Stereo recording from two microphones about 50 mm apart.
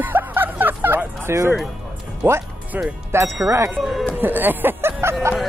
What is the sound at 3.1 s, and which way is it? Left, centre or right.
Speech, right.